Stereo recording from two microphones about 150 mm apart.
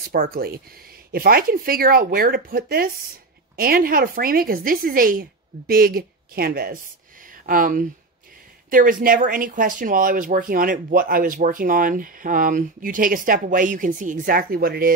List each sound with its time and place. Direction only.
0.0 s speech: 80° right
1.1 s speech: 75° right (ahead or behind)
5.7 s speech: 80° right
7.2 s speech: 65° right (ahead or behind); by 14.9 s 80° right